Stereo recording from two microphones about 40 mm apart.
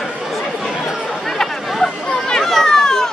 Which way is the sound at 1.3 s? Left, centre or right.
Centre.